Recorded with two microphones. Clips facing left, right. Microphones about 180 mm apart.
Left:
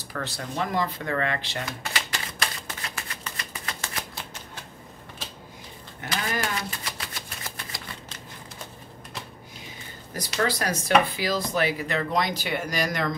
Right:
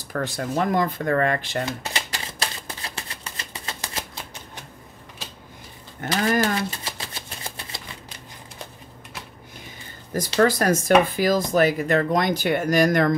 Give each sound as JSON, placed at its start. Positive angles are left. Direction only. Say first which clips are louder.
{"t": 0.1, "sound": "speech", "louder": "right 7 dB", "side_deg": -45}
{"t": 1.7, "sound": "shuffling cards", "louder": "right 3 dB", "side_deg": -30}
{"t": 5.9, "sound": "speech", "louder": "right 8 dB", "side_deg": -45}
{"t": 6.8, "sound": "typewriter", "louder": "right 2 dB", "side_deg": -25}
{"t": 10.4, "sound": "speech", "louder": "right 7 dB", "side_deg": -50}